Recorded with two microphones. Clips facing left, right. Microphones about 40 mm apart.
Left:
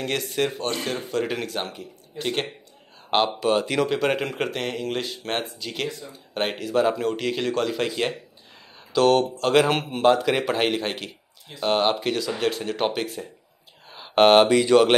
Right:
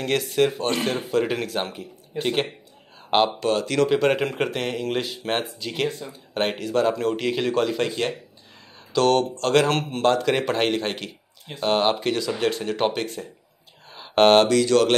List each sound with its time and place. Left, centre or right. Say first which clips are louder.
0.0 s speech: right 4 dB; centre
3.4 s speech: left 1 dB; centre
3.8 s speech: right 3 dB; centre
13.8 s a sound: even; centre
14.5 s mantra: left 2 dB; centre